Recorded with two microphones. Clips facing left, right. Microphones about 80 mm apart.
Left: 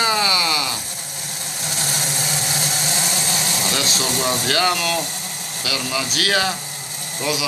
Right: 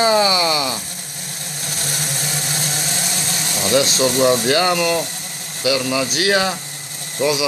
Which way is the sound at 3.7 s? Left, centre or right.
Right.